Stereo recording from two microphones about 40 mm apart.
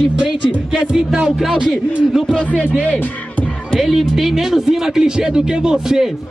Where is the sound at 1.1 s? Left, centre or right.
Centre.